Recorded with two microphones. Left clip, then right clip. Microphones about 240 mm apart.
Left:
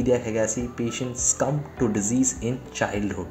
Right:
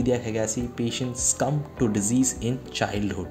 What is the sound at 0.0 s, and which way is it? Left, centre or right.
Speech, right.